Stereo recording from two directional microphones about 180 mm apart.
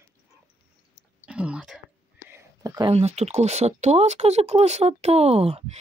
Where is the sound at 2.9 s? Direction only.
35° right (ahead or behind).